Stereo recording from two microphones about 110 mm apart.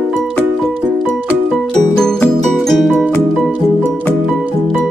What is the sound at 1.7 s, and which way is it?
Music, 5° left (ahead or behind).